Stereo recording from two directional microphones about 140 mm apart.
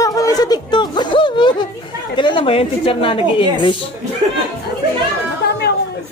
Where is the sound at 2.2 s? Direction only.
35° left (ahead or behind).